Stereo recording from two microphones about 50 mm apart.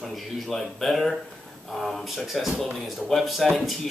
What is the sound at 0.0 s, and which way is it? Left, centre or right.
Speech, centre.